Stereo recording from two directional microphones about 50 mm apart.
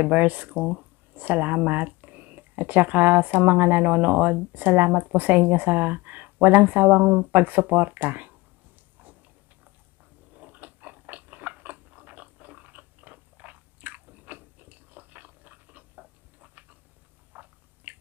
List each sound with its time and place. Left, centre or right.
0.0 s speech: right
10.3 s biting: right
17.3 s biting: right